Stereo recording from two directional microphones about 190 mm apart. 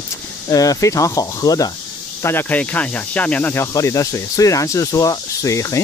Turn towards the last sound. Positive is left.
turn(degrees=15)  # may be behind; listen again after turning